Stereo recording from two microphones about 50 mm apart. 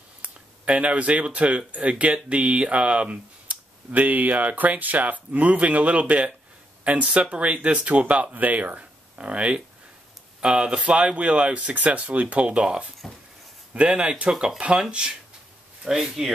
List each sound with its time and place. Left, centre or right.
0.2 s speech: right